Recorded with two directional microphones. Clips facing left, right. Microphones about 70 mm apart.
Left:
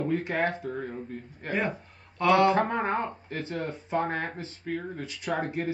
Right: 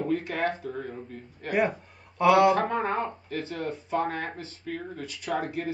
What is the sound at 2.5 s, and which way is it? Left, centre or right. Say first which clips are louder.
Speech: even; left.